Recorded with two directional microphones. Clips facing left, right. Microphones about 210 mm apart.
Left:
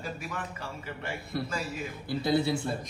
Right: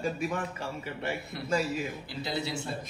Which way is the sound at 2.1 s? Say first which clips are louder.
Left 11 dB; 55° left (ahead or behind).